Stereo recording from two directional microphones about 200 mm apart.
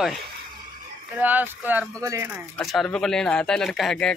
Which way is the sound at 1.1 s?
10° right (ahead or behind).